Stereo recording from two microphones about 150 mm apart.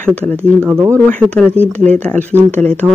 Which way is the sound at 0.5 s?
15° right (ahead or behind).